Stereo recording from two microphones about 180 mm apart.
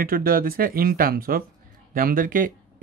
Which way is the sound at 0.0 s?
55° right (ahead or behind).